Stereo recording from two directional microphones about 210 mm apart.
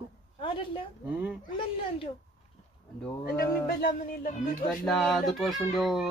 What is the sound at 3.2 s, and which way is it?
Music, 45° left (ahead or behind).